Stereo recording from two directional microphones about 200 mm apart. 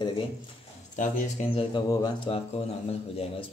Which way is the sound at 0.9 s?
40° left (ahead or behind).